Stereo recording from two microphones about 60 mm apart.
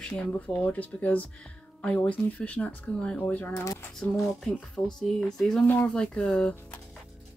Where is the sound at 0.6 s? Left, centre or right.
Left.